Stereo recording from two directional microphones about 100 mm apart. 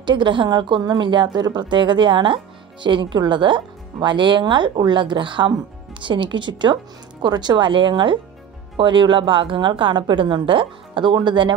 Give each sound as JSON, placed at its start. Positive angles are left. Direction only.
{"t": 0.0, "sound": "a woman's voice", "side_deg": -50}